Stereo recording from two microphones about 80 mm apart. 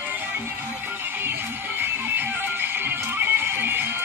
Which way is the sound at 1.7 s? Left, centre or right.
Right.